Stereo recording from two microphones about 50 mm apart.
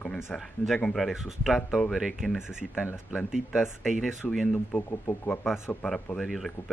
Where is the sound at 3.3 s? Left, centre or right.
Centre.